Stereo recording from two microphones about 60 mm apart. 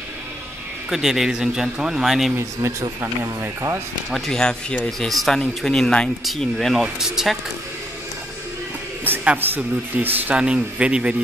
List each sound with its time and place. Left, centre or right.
0.8 s a man's voice: centre
2.6 s speech: right
4.1 s speech: centre
6.8 s a man's voice: centre
9.1 s a man's voice: right
9.6 s speech: right